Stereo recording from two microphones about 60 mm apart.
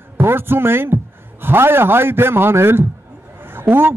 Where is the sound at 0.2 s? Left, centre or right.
Right.